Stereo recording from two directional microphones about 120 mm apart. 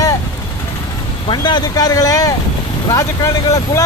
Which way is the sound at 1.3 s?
35° left (ahead or behind).